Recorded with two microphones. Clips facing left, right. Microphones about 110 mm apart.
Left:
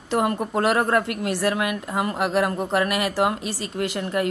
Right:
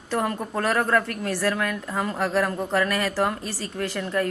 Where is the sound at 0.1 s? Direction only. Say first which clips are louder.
Left 3 dB; 15° left (ahead or behind).